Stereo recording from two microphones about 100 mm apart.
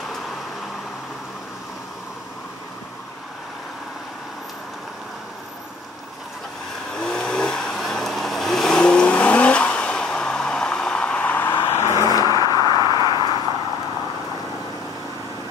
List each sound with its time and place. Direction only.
6.9 s vehicle: 5° left (ahead or behind)
11.6 s vehicle: 30° left (ahead or behind)
12.6 s a sound: 45° left (ahead or behind)
13.1 s vehicle: 50° left (ahead or behind)